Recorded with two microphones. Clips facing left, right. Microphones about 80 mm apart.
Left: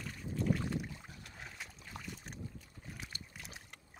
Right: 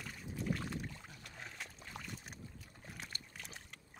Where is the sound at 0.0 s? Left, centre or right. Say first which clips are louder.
Left 5 dB; centre.